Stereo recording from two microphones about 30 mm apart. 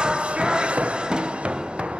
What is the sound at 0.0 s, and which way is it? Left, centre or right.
Music, right.